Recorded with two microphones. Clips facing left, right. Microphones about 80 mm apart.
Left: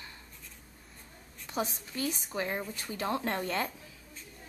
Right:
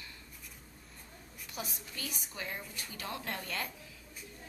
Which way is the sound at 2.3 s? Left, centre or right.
Left.